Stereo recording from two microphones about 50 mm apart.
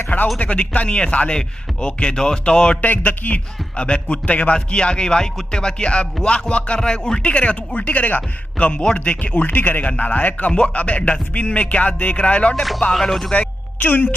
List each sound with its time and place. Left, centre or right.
0.4 s speech: left
2.8 s speech: left; by 7.2 s centre
7.2 s speech: left
12.9 s speech: centre
13.3 s a woman's voice: left